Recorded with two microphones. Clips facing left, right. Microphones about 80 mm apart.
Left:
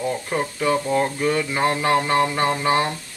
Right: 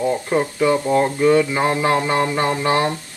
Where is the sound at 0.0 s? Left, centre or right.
Right.